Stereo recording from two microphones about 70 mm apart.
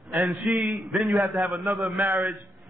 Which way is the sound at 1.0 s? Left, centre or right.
Centre.